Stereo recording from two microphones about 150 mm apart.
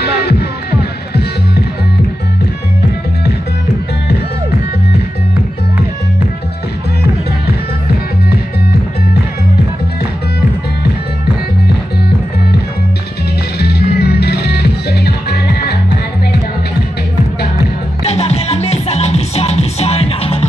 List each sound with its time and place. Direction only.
0.0 s music: 90° left
13.6 s music: 90° left
18.0 s music: 45° left (ahead or behind)